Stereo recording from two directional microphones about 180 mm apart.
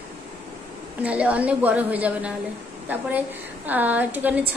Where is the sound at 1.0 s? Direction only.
5° right (ahead or behind).